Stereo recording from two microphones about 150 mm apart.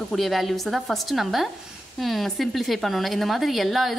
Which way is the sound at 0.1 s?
Centre (ahead or behind).